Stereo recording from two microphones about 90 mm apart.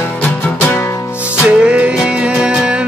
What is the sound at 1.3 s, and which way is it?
Music, 10° right (ahead or behind).